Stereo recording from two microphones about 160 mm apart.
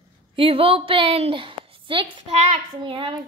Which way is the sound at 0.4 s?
35° right (ahead or behind).